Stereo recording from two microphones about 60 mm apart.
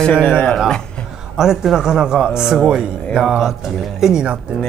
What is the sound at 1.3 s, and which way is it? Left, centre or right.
A man's voice, centre.